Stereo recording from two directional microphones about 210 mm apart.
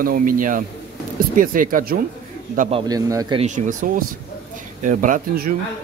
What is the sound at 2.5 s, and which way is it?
Speech, 30° right (ahead or behind).